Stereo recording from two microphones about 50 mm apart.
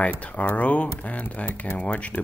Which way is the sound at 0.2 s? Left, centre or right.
Left.